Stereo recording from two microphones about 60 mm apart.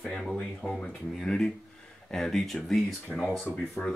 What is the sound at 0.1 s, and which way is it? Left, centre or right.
Speech, centre.